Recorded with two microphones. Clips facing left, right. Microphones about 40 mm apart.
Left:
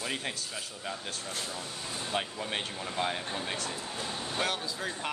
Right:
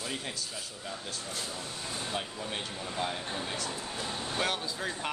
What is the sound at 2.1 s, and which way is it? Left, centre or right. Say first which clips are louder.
Speech: left 6 dB; left.